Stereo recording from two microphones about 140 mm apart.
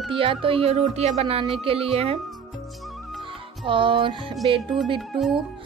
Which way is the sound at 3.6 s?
35° right (ahead or behind).